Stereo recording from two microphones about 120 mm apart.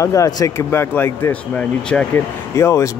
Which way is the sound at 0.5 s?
20° left (ahead or behind).